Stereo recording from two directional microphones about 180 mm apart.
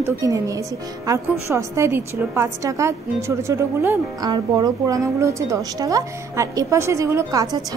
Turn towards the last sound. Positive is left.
turn(degrees=-20)  # may be behind; listen again after turning